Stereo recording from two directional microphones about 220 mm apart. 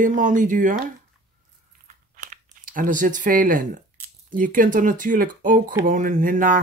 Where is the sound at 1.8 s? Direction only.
35° right (ahead or behind).